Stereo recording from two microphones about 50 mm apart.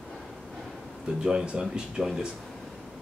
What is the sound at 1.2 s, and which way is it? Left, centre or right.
Speech, centre.